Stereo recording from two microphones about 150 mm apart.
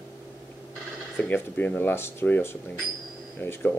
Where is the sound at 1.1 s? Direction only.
15° left (ahead or behind).